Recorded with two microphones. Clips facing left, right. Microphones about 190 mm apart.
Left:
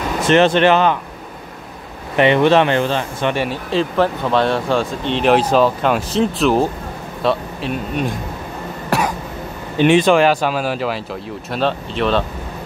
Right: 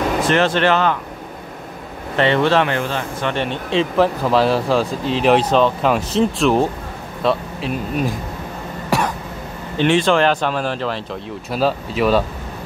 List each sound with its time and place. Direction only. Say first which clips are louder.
0.3 s speech: left 5 dB; 20° left (ahead or behind)
2.1 s speech: left 3 dB; 15° left (ahead or behind)
3.3 s speech: left 2 dB; 5° left (ahead or behind)
8.9 s throat clearing: left 1 dB; centre (ahead or behind)
9.8 s speech: left 3 dB; 15° left (ahead or behind)
11.5 s speech: right 1 dB; 5° right (ahead or behind)